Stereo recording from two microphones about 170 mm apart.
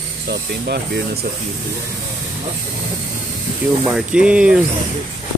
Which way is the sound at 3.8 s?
5° right (ahead or behind).